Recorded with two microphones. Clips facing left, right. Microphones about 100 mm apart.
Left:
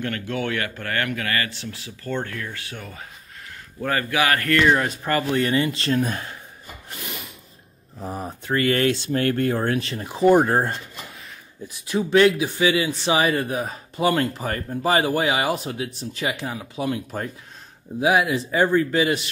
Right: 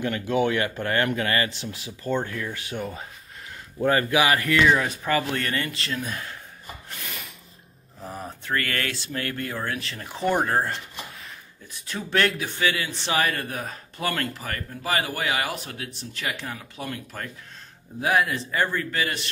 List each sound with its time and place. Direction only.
0.0 s speech: 15° right (ahead or behind)
2.8 s speech: 30° right (ahead or behind)
3.8 s a man's voice: 20° right (ahead or behind)
4.6 s speech: centre (ahead or behind)
5.4 s speech: 15° left (ahead or behind)
5.8 s speech: 35° left (ahead or behind)
8.0 s speech: 20° left (ahead or behind)
9.1 s speech: 35° left (ahead or behind)
9.8 s speech: 25° left (ahead or behind)